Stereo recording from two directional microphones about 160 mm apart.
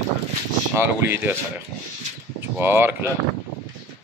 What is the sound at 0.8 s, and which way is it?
Speech, 15° right (ahead or behind).